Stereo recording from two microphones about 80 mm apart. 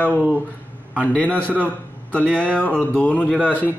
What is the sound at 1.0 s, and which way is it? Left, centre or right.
A man's voice, centre.